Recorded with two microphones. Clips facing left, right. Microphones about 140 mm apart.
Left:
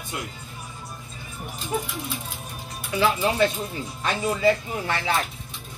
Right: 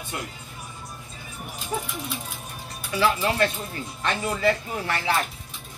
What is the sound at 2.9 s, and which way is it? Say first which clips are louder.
Speech: left 1 dB; 15° left (ahead or behind).